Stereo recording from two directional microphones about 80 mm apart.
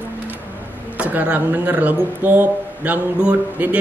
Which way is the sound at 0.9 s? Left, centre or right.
Centre.